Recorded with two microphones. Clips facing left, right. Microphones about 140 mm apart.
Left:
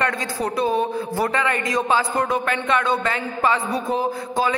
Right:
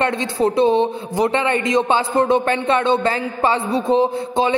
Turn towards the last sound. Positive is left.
turn(degrees=-25)  # may be behind; listen again after turning